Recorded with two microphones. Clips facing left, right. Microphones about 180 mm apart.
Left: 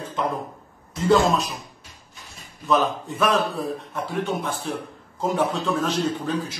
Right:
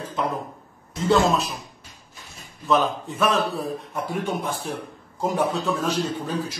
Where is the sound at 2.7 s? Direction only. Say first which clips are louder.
Even; centre (ahead or behind).